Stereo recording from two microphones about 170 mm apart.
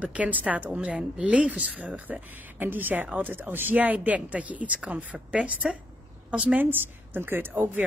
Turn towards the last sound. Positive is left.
turn(degrees=-10)  # may be behind; listen again after turning